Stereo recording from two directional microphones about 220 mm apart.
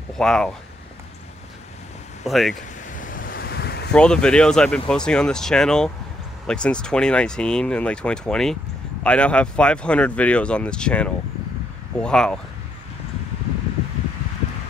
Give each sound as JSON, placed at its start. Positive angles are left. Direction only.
{"t": 0.2, "sound": "speech", "side_deg": 5}
{"t": 2.2, "sound": "speech", "side_deg": 0}
{"t": 2.9, "sound": "waves", "side_deg": 35}
{"t": 3.9, "sound": "speech", "side_deg": 5}